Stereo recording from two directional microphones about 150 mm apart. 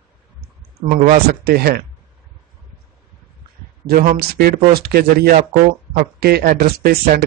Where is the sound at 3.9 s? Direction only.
70° right (ahead or behind).